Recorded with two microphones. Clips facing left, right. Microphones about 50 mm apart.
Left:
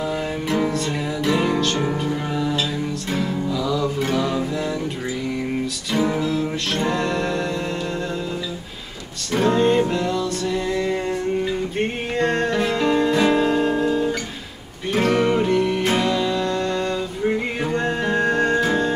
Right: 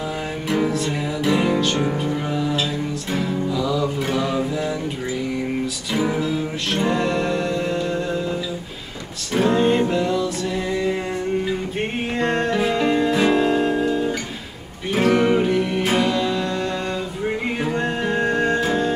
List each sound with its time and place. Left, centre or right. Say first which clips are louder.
0.5 s music: right 2 dB; centre
5.9 s music: left 1 dB; centre
9.3 s music: even; centre
12.2 s music: left 1 dB; centre